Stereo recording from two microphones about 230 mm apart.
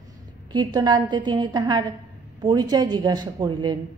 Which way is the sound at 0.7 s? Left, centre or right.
Centre.